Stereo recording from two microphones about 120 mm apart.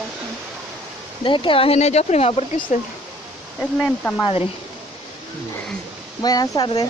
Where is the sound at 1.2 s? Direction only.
45° left (ahead or behind); by 2.8 s 60° left (ahead or behind).